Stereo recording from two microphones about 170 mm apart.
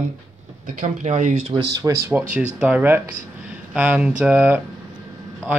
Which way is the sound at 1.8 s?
15° right (ahead or behind).